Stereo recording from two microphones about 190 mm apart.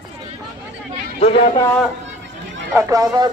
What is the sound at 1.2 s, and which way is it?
Speech, 30° left (ahead or behind).